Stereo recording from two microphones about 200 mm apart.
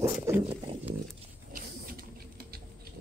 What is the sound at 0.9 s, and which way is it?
Dog, 30° right (ahead or behind).